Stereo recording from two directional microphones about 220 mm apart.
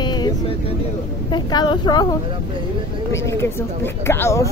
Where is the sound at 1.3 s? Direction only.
20° left (ahead or behind).